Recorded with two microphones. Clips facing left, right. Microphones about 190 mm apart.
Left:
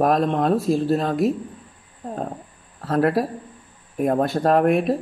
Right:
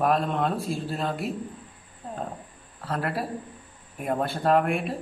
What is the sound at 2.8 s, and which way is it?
Speech, 45° left (ahead or behind).